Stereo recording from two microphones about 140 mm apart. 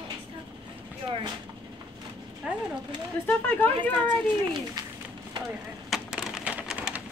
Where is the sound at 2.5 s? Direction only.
5° right (ahead or behind).